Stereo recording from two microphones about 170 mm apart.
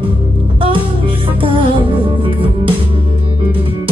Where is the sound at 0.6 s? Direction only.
30° right (ahead or behind).